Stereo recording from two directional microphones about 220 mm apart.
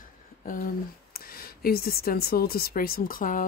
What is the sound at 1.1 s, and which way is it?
Speech, 45° left (ahead or behind).